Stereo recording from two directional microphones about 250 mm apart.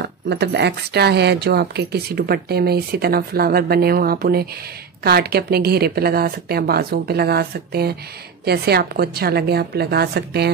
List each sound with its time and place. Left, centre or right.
0.0 s speech: right